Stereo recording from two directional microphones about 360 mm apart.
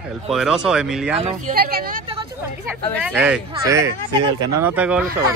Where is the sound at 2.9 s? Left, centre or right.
Centre.